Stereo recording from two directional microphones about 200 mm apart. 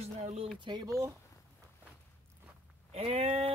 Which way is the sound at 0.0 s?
30° right (ahead or behind).